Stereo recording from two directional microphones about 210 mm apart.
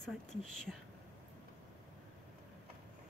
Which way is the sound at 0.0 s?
5° left (ahead or behind).